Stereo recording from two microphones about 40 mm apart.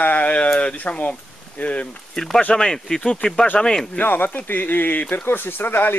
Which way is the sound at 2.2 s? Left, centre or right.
Centre.